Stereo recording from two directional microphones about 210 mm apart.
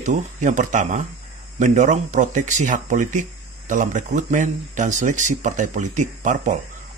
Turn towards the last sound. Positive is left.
turn(degrees=-35)  # may be behind; listen again after turning